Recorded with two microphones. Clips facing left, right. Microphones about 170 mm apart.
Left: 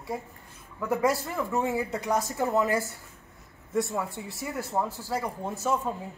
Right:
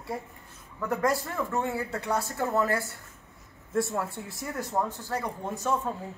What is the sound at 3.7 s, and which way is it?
Speech, centre (ahead or behind).